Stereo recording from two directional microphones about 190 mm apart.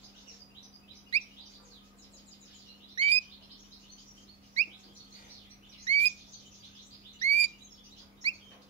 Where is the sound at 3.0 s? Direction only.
25° right (ahead or behind).